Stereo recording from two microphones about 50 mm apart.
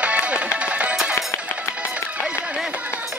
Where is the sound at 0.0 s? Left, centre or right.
Right.